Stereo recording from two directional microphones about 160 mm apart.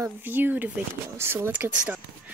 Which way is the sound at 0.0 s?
10° right (ahead or behind).